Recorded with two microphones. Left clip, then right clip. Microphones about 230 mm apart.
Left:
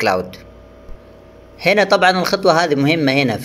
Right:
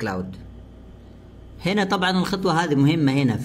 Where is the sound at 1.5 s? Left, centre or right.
Centre.